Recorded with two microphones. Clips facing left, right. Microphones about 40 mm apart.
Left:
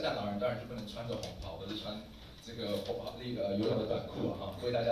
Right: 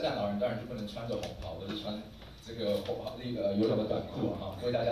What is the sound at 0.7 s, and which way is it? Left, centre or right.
A man's voice, right.